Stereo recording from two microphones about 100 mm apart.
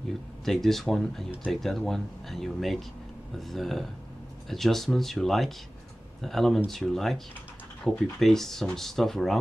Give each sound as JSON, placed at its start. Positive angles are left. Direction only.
{"t": 0.5, "sound": "speech", "side_deg": 5}